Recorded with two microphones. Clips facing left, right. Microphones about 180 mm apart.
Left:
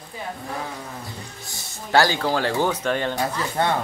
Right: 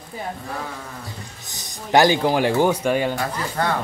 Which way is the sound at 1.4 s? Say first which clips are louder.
Right 1 dB; 20° right (ahead or behind).